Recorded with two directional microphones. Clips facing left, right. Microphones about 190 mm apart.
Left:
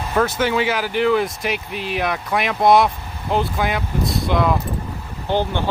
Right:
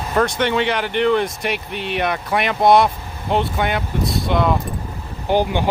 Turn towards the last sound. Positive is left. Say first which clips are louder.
# right 3 dB
turn(degrees=-15)  # may be behind; listen again after turning